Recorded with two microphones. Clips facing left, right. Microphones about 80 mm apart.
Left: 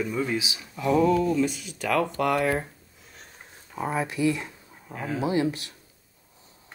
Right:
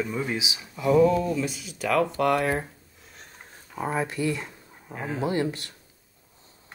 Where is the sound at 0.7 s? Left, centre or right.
Centre.